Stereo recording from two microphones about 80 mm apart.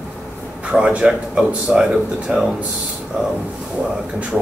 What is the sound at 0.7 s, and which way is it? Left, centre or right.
Speech, centre.